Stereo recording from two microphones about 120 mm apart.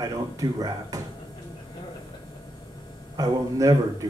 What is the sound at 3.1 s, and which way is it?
Speech, 30° right (ahead or behind).